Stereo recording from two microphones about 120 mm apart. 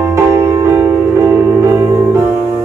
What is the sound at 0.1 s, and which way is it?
Music, 20° right (ahead or behind).